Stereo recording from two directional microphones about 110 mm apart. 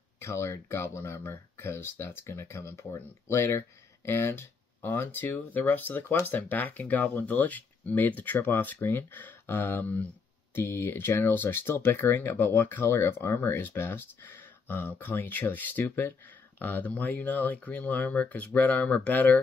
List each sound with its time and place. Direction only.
0.2 s speech: 25° left (ahead or behind)